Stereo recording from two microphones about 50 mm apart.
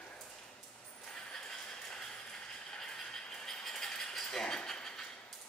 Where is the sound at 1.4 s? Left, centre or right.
Centre.